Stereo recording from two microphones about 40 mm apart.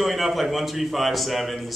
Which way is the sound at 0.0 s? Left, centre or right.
Centre.